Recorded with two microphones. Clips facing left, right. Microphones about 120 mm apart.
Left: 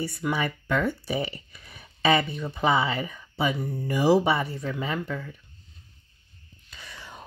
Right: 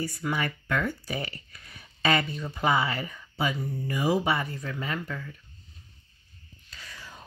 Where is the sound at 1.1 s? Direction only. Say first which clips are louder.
Left 5 dB; 20° left (ahead or behind).